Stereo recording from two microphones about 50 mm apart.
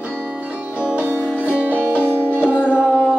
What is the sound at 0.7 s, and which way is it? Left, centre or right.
Music, right.